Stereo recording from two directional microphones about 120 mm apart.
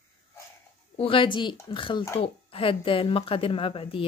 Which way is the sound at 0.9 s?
50° left (ahead or behind).